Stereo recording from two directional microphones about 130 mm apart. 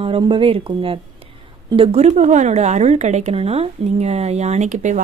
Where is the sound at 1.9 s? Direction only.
60° right (ahead or behind).